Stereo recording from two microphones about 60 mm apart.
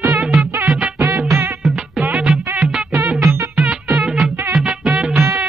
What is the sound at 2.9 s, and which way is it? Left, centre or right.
Music, right.